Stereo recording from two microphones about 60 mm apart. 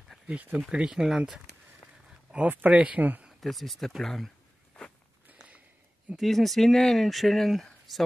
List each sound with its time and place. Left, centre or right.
0.3 s speech: right
0.7 s speech: centre
2.3 s speech: right
3.3 s speech: centre
6.1 s speech: centre